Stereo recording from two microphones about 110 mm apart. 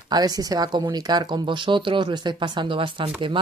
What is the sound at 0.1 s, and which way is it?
Speech, 35° right (ahead or behind).